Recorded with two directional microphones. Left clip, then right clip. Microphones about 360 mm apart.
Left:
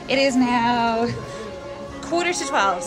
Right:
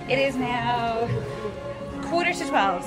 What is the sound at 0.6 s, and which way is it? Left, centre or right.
Music, left.